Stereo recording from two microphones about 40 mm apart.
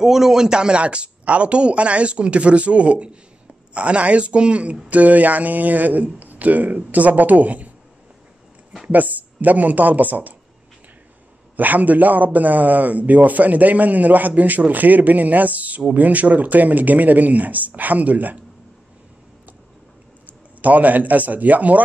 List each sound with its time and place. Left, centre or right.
0.0 s a man's voice: centre; by 4.7 s right
4.8 s a man's voice: right
8.8 s a man's voice: right
11.5 s a man's voice: right
20.6 s a man's voice: right